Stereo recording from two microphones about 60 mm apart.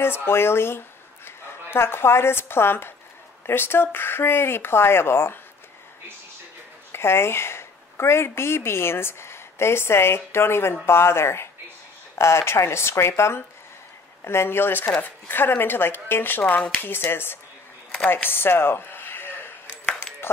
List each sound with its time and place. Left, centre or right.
0.0 s speech: left
6.9 s a woman's voice: left
18.0 s a sound: left